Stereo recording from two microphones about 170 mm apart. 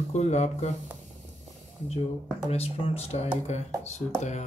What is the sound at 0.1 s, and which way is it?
Speech, 40° left (ahead or behind).